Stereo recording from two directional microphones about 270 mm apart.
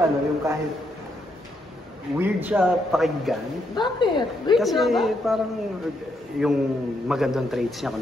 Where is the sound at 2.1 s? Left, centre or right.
Centre.